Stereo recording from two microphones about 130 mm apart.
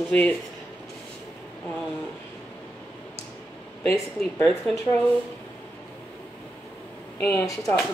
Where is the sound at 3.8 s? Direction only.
20° left (ahead or behind).